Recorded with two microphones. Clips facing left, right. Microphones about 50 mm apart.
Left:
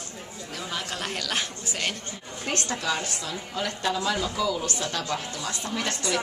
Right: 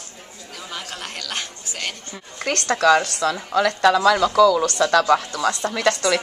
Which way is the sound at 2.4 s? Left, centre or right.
Right.